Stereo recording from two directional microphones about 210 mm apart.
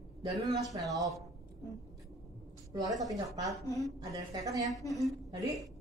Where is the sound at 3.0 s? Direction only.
15° right (ahead or behind).